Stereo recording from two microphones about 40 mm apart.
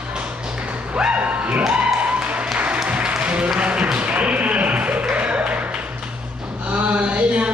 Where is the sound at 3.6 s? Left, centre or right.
Right.